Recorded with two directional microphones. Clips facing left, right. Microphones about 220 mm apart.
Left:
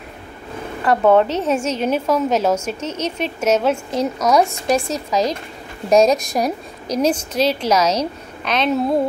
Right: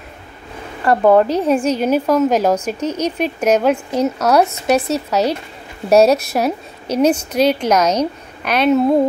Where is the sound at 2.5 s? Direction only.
35° right (ahead or behind).